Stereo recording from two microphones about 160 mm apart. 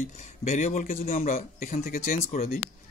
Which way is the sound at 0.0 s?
45° left (ahead or behind).